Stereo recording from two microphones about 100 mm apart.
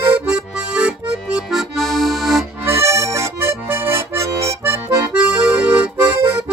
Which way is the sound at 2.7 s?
25° right (ahead or behind).